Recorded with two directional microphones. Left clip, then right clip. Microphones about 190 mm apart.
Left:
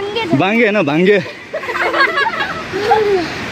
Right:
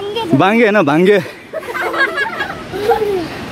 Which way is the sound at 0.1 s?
15° right (ahead or behind).